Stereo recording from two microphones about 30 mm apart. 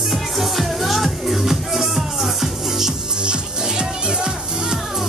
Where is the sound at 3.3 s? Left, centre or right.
Right.